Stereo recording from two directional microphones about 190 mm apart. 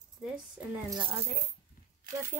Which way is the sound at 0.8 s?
20° right (ahead or behind).